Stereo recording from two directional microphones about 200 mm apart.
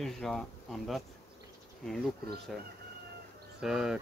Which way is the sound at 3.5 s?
Centre (ahead or behind).